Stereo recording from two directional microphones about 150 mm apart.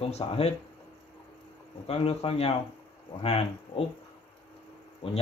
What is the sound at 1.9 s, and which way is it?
Speech, 40° left (ahead or behind).